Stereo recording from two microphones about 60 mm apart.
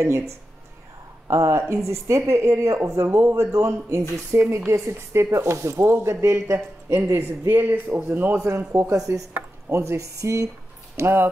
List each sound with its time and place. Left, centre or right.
0.0 s a woman's voice: right
2.8 s speech: right
4.4 s speech: right
4.6 s speech: right
7.4 s speech: right
8.9 s a woman's voice: right
9.7 s a woman's voice: right
11.0 s speech: right